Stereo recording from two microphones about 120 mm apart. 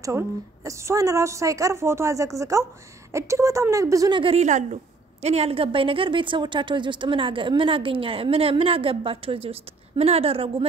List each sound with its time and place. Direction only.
0.7 s a woman's voice: 25° right (ahead or behind)
4.1 s a woman's voice: 45° right (ahead or behind)
4.4 s a woman's voice: 75° right (ahead or behind)
5.2 s a woman's voice: 60° right (ahead or behind)